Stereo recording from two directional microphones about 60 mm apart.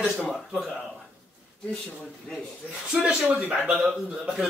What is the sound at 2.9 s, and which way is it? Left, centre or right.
Speech, centre.